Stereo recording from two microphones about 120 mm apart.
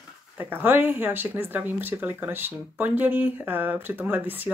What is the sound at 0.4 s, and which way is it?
Speech, 15° right (ahead or behind).